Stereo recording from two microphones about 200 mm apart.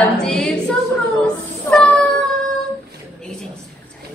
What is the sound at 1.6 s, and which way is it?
Cat, 5° left (ahead or behind).